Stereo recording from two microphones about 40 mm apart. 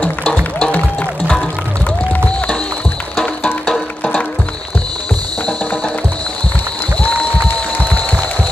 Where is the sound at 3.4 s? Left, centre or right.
Left.